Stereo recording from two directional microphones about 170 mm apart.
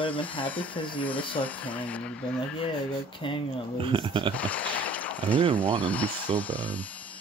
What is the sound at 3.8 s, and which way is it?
Speech, 30° right (ahead or behind).